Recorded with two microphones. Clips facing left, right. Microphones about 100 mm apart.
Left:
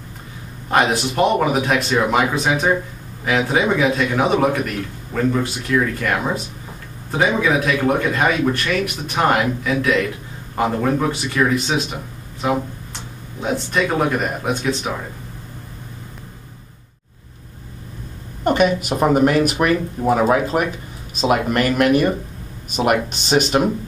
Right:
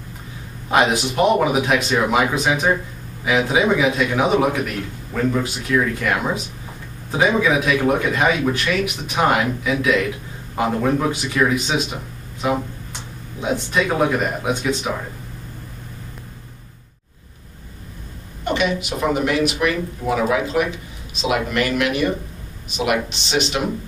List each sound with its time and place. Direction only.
0.7 s a man's voice: centre (ahead or behind)
18.4 s speech: 45° left (ahead or behind)